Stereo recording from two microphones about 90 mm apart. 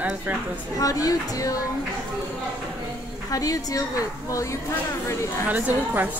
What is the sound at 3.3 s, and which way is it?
A woman's voice, 40° left (ahead or behind).